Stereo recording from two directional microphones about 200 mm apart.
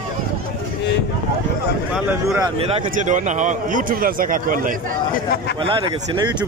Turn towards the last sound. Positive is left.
turn(degrees=-20)  # may be behind; listen again after turning